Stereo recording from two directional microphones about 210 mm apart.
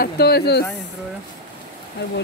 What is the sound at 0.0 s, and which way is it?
Speech, 50° left (ahead or behind).